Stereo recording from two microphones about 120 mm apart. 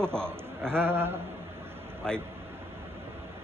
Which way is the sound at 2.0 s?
5° left (ahead or behind).